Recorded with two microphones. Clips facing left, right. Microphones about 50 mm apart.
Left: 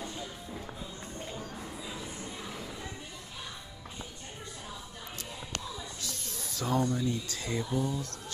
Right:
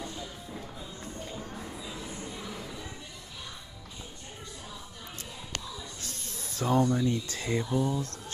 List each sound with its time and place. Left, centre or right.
0.0 s music: centre
1.6 s a sound: centre
5.9 s snake: right
6.8 s speech: centre
7.1 s speech: right